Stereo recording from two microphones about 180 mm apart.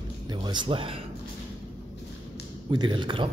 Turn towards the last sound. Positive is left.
turn(degrees=-25)  # may be behind; listen again after turning